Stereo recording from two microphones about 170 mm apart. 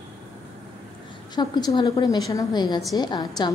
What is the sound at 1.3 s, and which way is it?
A woman's voice, 25° left (ahead or behind).